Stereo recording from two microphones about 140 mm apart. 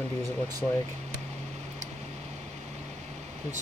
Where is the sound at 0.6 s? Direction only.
10° left (ahead or behind).